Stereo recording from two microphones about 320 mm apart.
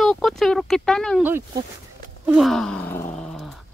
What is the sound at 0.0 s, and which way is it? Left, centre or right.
Speech, centre.